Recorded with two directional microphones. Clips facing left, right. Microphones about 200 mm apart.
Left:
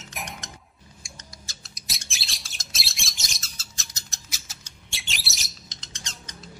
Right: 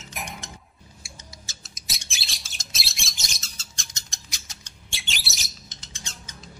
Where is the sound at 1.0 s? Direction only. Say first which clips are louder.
Even; centre (ahead or behind).